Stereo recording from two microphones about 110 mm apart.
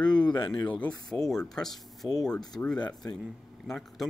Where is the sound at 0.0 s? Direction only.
10° left (ahead or behind).